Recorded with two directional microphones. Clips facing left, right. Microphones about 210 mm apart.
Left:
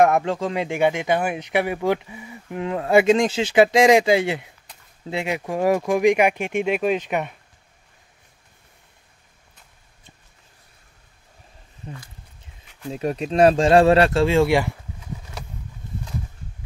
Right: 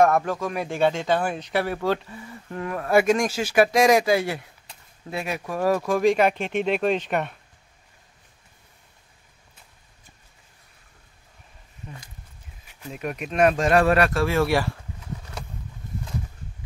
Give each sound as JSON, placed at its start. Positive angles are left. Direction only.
{"t": 0.0, "sound": "speech", "side_deg": 20}
{"t": 2.6, "sound": "speech", "side_deg": 20}
{"t": 12.9, "sound": "speech", "side_deg": 30}